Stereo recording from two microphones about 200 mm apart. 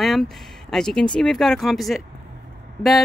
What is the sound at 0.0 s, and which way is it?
Speech, centre (ahead or behind).